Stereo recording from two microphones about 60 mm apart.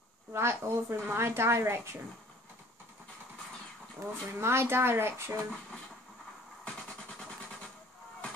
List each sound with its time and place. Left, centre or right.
0.3 s a woman's voice: right
4.0 s a woman's voice: right